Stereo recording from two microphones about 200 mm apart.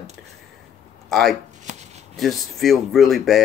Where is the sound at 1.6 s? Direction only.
35° right (ahead or behind).